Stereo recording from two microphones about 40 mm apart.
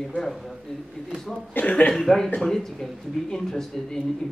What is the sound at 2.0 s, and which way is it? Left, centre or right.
Speech, centre.